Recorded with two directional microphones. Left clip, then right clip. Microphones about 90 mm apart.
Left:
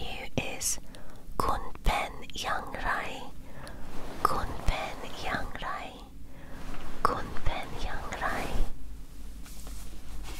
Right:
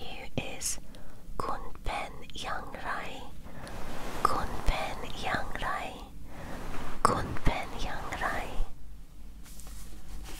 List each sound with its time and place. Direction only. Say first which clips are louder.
0.0 s whispering: left 3 dB; 15° left (ahead or behind); by 6.0 s 5° right (ahead or behind)
7.0 s whispering: right 2 dB; 20° right (ahead or behind)